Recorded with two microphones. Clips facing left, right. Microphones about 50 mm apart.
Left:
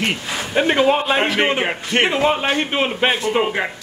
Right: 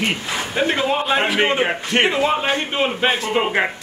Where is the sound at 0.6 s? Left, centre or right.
Left.